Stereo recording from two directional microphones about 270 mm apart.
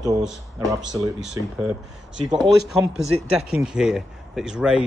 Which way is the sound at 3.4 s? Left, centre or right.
Centre.